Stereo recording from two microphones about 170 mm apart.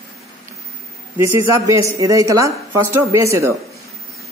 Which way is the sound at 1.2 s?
20° right (ahead or behind).